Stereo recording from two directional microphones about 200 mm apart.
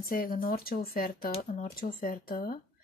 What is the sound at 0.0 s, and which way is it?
Speech, 45° left (ahead or behind).